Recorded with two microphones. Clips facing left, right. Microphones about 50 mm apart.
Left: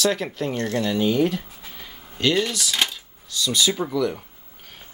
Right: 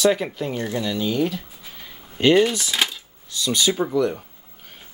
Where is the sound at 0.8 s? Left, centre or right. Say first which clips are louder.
Left 3 dB; centre.